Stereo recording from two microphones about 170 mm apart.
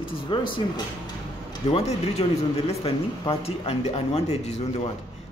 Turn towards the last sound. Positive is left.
turn(degrees=40)  # may be behind; listen again after turning